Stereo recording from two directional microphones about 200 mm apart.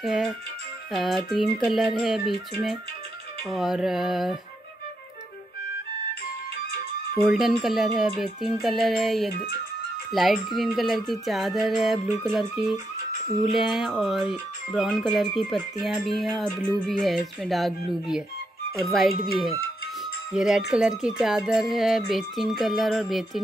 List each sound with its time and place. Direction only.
0.0 s speech: centre (ahead or behind)
7.2 s speech: centre (ahead or behind)
19.0 s speech: 50° left (ahead or behind)
20.3 s speech: 5° right (ahead or behind)